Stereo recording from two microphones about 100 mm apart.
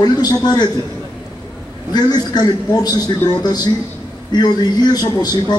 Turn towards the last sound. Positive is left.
turn(degrees=45)  # may be behind; listen again after turning